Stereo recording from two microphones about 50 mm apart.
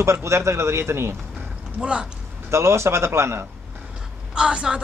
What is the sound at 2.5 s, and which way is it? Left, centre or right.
Speech, right.